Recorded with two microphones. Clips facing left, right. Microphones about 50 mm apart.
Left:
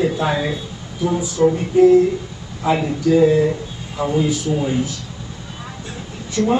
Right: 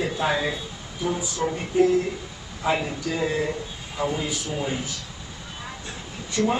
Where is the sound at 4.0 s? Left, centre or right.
Centre.